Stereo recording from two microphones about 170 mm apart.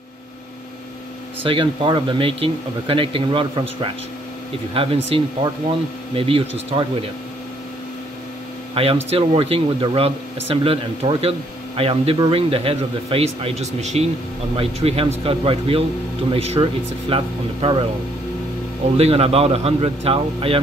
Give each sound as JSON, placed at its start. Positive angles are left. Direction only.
{"t": 1.4, "sound": "speech", "side_deg": -30}
{"t": 8.8, "sound": "speech", "side_deg": -35}
{"t": 18.9, "sound": "speech", "side_deg": -35}